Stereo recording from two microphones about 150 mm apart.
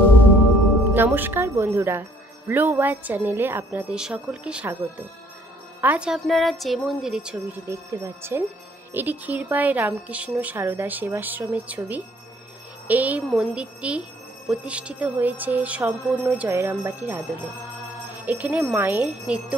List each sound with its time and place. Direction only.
0.9 s a woman's voice: 15° right (ahead or behind)
7.9 s speech: 20° right (ahead or behind)